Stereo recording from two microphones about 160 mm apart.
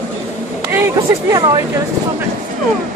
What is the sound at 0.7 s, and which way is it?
Speech, 15° right (ahead or behind).